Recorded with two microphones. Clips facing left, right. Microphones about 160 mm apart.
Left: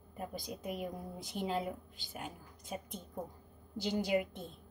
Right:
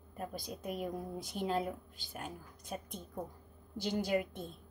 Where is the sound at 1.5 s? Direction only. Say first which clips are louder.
Right 2 dB; 45° right (ahead or behind).